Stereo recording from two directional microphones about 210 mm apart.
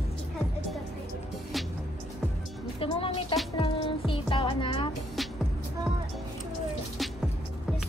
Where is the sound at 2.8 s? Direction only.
25° left (ahead or behind).